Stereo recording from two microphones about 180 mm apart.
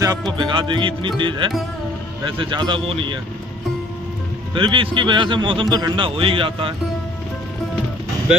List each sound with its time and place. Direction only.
0.4 s a man's voice: 25° right (ahead or behind)
4.6 s a man's voice: 25° right (ahead or behind)